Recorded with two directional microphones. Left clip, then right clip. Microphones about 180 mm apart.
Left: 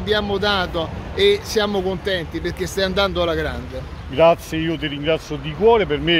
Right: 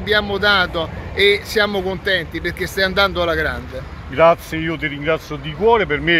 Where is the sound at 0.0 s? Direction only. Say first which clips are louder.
Right 3 dB; 20° left (ahead or behind).